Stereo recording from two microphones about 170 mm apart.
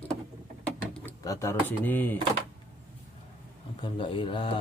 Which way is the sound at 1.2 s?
15° left (ahead or behind).